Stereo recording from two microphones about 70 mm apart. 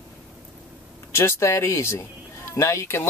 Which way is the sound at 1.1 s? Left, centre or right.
Left.